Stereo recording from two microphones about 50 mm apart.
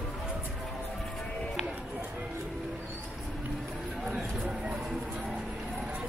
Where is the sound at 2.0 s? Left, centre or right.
Right.